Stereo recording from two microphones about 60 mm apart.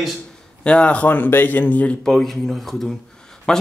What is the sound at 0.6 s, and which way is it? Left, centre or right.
A man's voice, centre.